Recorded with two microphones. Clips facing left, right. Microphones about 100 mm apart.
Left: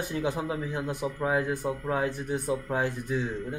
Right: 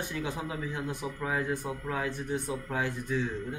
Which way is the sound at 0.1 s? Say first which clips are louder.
Left 5 dB; 25° left (ahead or behind).